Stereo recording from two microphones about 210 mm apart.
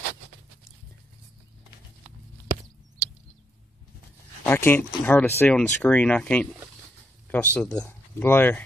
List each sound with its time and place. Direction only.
4.5 s speech: 10° left (ahead or behind)